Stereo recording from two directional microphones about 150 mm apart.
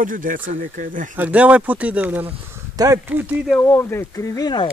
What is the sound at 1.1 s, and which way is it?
Speech, 10° right (ahead or behind).